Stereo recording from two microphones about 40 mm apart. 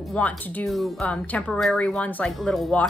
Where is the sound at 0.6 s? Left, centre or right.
Centre.